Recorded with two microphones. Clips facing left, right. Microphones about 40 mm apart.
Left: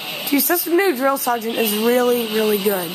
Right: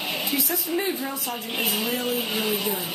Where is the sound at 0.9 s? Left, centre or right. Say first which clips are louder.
Left 12 dB; left.